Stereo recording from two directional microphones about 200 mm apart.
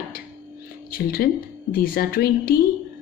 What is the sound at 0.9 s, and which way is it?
Speech, 45° left (ahead or behind).